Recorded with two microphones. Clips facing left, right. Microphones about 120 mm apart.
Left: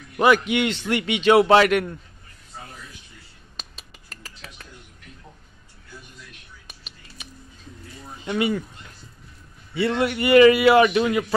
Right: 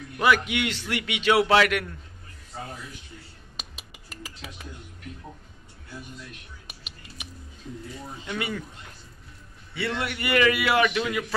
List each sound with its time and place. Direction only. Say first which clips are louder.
0.2 s a man's voice: left 5 dB; 30° left (ahead or behind)
3.5 s a sound: even; 10° right (ahead or behind)
6.7 s whispering: right 1 dB; 10° right (ahead or behind)
8.3 s a man's voice: left 8 dB; 20° left (ahead or behind)
9.8 s a man's voice: left 8 dB; 20° left (ahead or behind)